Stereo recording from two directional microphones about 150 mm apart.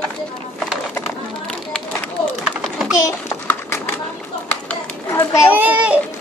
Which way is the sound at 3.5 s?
15° left (ahead or behind).